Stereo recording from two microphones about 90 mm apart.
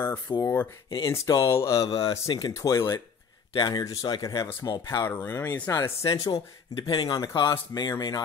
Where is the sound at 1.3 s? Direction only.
35° left (ahead or behind).